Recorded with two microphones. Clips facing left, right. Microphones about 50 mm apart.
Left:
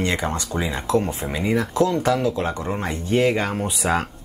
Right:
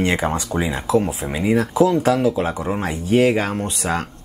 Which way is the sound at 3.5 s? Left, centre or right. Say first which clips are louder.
Left 1 dB; centre.